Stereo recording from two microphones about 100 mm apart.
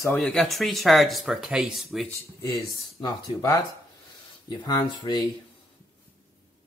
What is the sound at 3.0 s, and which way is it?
Speech, 40° left (ahead or behind).